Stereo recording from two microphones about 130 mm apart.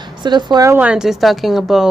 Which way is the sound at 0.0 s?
35° right (ahead or behind).